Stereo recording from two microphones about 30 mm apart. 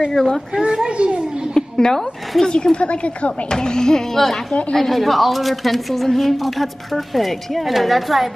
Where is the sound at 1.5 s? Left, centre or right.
Left.